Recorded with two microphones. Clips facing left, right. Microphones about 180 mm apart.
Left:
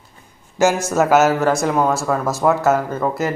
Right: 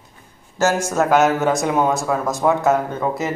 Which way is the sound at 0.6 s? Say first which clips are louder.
Left 2 dB; 10° left (ahead or behind).